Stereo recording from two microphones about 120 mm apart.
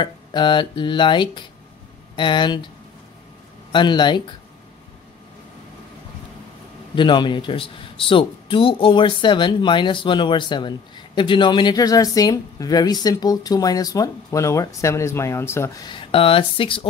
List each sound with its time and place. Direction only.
0.0 s speech: 40° left (ahead or behind)
3.7 s speech: 40° left (ahead or behind)
7.0 s speech: 40° left (ahead or behind); by 15.8 s 20° left (ahead or behind)
15.8 s speech: 45° left (ahead or behind)